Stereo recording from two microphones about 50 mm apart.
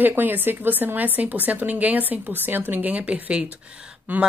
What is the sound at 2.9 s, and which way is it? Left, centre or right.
Speech, right.